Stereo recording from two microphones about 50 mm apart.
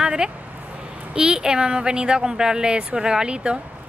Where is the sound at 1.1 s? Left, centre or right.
Centre.